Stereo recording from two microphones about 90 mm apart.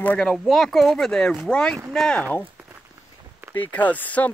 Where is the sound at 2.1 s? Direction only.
15° left (ahead or behind).